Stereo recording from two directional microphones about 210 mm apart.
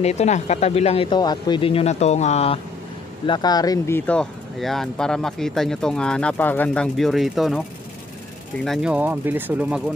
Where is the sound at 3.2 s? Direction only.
20° left (ahead or behind).